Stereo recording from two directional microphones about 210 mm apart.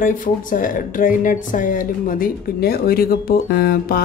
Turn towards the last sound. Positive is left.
turn(degrees=45)  # may be behind; listen again after turning